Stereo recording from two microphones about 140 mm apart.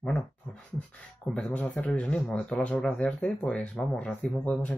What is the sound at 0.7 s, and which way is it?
Speech, 10° left (ahead or behind).